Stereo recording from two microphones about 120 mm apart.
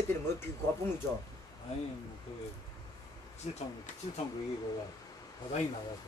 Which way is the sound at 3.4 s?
65° left (ahead or behind).